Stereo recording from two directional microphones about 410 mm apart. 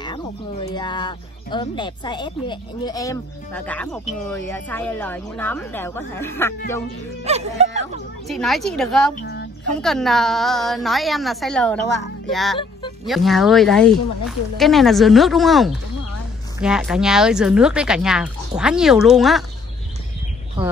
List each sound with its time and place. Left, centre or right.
0.0 s a woman's voice: centre
7.2 s speech: centre
8.3 s a woman's voice: centre
9.2 s a sound: left
9.8 s a woman's voice: centre